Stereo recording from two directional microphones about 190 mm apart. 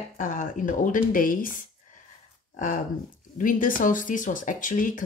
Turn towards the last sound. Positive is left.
turn(degrees=45)  # may be behind; listen again after turning